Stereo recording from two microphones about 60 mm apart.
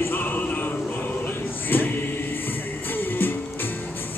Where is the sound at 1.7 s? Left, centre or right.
Left.